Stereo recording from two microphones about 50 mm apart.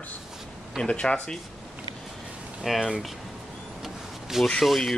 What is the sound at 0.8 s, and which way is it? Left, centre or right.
Speech, left.